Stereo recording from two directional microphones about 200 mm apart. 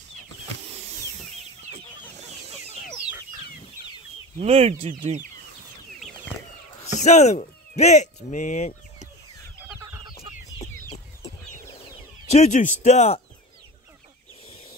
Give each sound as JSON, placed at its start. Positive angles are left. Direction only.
{"t": 4.4, "sound": "speech", "side_deg": -30}
{"t": 7.0, "sound": "speech", "side_deg": 35}
{"t": 10.6, "sound": "chicken", "side_deg": 15}
{"t": 12.3, "sound": "a man's voice", "side_deg": 35}